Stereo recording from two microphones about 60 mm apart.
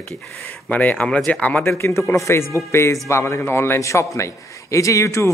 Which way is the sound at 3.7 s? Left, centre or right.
Left.